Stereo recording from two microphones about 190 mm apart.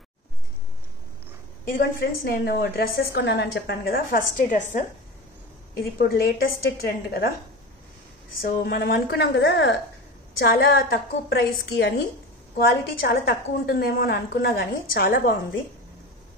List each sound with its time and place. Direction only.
1.7 s a woman's voice: 50° left (ahead or behind)
5.8 s a woman's voice: 55° left (ahead or behind)
8.4 s a woman's voice: 50° left (ahead or behind)
10.4 s a woman's voice: 55° left (ahead or behind)
13.0 s a woman's voice: 55° left (ahead or behind)